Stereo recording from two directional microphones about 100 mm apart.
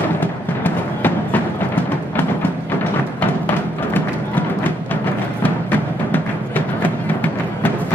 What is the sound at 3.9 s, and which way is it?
Music, 20° left (ahead or behind).